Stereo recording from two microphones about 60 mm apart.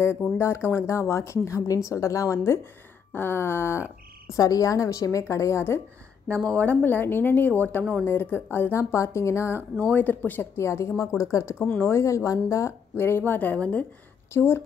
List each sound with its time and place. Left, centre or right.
0.4 s speech: left
4.4 s a woman's voice: left
6.2 s speech: left
8.7 s speech: left
9.9 s a woman's voice: left
12.9 s speech: left
14.3 s speech: left